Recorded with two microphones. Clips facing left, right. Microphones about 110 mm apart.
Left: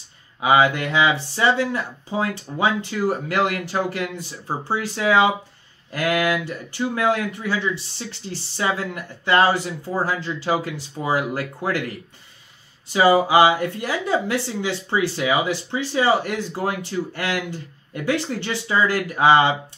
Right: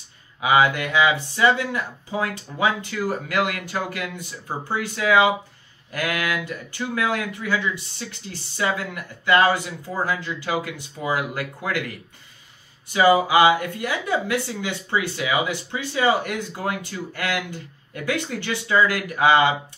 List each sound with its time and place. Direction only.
0.4 s speech: 30° left (ahead or behind)
12.9 s speech: 30° left (ahead or behind)